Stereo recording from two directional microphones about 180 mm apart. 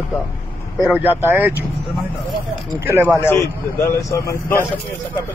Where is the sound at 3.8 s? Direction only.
15° left (ahead or behind).